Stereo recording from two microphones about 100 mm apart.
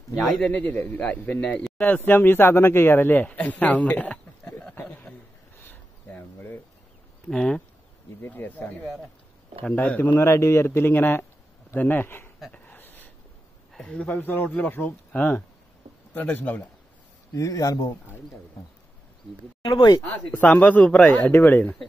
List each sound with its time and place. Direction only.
0.4 s speech: 15° left (ahead or behind)
5.6 s a sound: 20° left (ahead or behind)
7.2 s speech: 10° left (ahead or behind)
8.2 s speech: 20° left (ahead or behind)
12.6 s a sound: 20° left (ahead or behind)
13.7 s speech: 10° left (ahead or behind)
17.3 s speech: 35° left (ahead or behind)
19.6 s speech: 45° left (ahead or behind)
20.0 s speech: 15° left (ahead or behind)